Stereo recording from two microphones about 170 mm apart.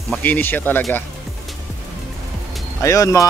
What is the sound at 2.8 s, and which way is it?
Speech, 20° left (ahead or behind).